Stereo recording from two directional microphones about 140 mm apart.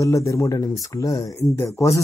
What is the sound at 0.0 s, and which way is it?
Speech, 20° left (ahead or behind).